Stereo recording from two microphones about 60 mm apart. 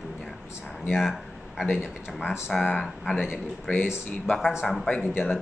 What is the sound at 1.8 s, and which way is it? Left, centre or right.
Speech, centre.